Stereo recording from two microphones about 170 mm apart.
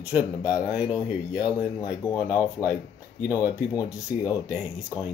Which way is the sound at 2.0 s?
20° left (ahead or behind).